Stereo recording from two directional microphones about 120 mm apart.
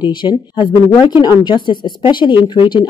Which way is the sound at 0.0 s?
40° left (ahead or behind).